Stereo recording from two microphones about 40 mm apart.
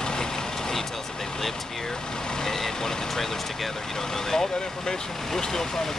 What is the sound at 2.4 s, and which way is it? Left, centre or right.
Speech, centre.